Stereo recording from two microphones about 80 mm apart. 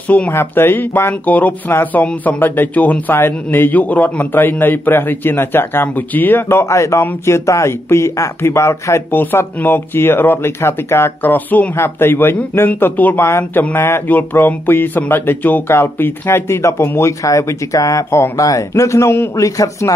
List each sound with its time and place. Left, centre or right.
0.3 s a man's voice: left
19.4 s speech: left